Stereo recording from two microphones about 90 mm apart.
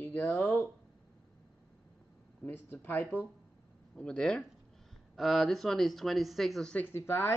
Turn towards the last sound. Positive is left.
turn(degrees=25)  # may be behind; listen again after turning